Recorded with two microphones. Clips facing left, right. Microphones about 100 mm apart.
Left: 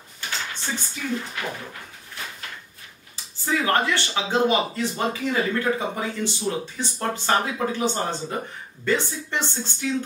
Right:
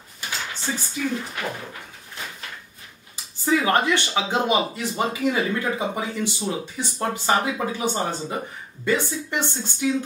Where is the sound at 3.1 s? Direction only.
20° right (ahead or behind).